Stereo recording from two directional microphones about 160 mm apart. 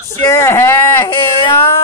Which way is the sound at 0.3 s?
15° left (ahead or behind).